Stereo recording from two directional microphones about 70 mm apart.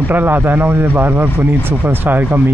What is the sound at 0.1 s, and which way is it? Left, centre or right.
Speech, right.